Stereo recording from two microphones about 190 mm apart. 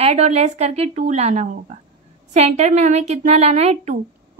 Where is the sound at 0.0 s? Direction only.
35° right (ahead or behind).